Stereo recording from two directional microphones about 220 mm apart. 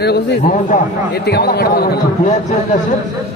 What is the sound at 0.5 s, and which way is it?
Speech, 35° left (ahead or behind).